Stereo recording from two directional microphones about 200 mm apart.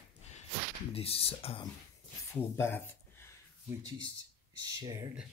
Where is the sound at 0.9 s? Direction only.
30° left (ahead or behind).